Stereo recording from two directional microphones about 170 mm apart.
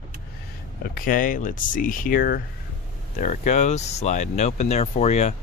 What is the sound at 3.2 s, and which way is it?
Speech, 45° left (ahead or behind).